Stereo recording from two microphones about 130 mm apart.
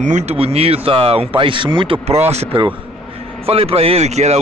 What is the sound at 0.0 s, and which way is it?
Speech, 60° right (ahead or behind).